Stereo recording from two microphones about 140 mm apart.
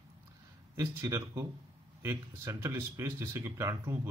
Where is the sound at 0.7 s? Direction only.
20° right (ahead or behind).